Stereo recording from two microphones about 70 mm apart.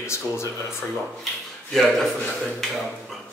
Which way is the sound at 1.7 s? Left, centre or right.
Centre.